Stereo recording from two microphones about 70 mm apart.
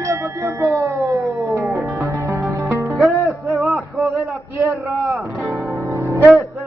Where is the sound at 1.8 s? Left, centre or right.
Right.